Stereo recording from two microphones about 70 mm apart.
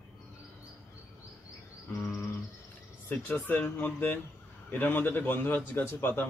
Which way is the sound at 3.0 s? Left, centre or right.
Left.